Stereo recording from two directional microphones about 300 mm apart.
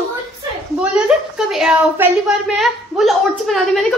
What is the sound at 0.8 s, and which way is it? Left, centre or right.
A woman's voice, centre.